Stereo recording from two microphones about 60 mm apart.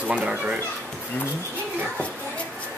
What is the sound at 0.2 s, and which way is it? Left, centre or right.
Speech, centre.